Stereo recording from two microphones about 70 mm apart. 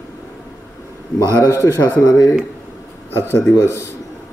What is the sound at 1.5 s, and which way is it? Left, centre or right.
Speech, left.